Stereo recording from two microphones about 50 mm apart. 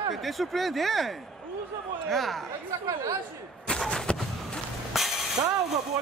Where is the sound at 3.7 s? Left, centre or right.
Centre.